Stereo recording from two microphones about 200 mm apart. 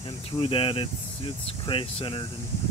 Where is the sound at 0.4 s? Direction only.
25° left (ahead or behind).